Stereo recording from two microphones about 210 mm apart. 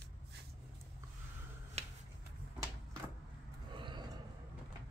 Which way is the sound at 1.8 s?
30° right (ahead or behind).